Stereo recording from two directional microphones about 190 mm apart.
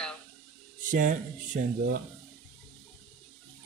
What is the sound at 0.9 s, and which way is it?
Speech, 45° right (ahead or behind).